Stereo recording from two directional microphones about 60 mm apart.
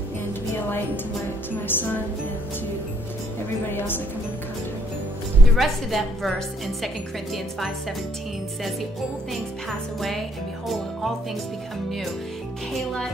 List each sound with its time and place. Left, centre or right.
1.7 s speech: left
3.7 s speech: left
5.6 s speech: centre
9.3 s speech: centre
12.7 s speech: centre